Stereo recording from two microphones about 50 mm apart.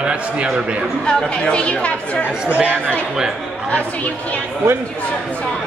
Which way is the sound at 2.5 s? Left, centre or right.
Right.